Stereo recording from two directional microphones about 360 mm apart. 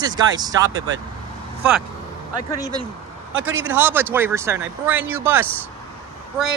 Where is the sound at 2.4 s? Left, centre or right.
Centre.